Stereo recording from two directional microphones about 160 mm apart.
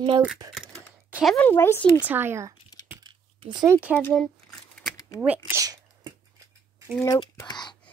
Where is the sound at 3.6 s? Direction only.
10° right (ahead or behind).